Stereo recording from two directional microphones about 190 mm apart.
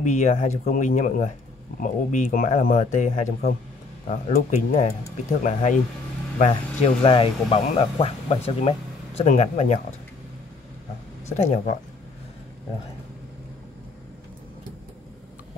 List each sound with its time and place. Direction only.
0.0 s speech: 40° left (ahead or behind)
11.2 s speech: 35° left (ahead or behind)